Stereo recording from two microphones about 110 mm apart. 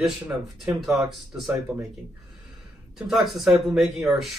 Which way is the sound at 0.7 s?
5° right (ahead or behind).